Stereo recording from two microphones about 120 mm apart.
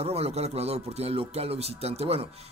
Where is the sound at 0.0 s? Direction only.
60° right (ahead or behind).